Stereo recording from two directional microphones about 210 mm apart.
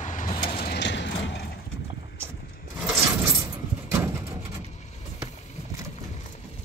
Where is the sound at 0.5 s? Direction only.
50° left (ahead or behind).